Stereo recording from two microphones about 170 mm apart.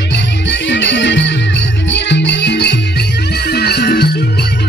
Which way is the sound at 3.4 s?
70° left (ahead or behind).